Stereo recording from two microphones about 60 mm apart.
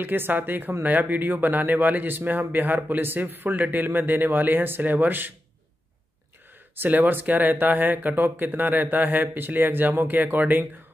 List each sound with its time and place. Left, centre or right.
0.0 s speech: right
6.7 s speech: right